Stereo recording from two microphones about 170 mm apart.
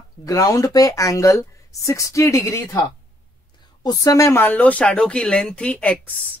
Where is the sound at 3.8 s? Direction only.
20° left (ahead or behind).